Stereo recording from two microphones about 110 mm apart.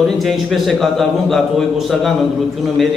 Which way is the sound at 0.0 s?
Centre (ahead or behind).